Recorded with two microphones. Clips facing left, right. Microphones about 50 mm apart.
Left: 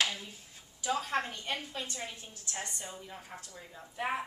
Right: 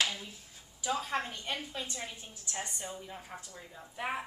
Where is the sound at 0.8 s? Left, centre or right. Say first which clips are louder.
Left 1 dB; centre.